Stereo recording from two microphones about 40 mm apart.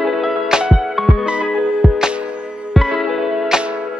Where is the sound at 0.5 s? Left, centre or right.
Right.